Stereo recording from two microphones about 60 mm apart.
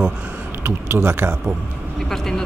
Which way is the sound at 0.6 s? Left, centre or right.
Right.